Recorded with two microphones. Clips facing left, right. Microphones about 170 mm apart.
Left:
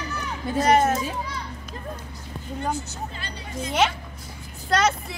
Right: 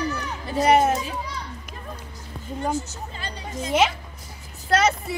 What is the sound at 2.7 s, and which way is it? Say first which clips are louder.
Speech: right 2 dB; 45° right (ahead or behind).